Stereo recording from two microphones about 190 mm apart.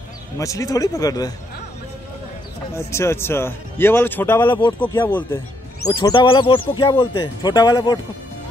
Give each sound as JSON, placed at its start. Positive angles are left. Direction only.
{"t": 0.4, "sound": "speech", "side_deg": 15}
{"t": 2.9, "sound": "speech", "side_deg": 15}
{"t": 5.9, "sound": "speech", "side_deg": 20}